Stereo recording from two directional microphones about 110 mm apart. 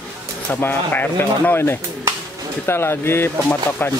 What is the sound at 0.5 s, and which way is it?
Speech, 20° left (ahead or behind).